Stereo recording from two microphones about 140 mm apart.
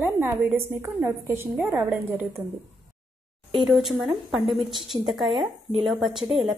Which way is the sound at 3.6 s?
Centre (ahead or behind).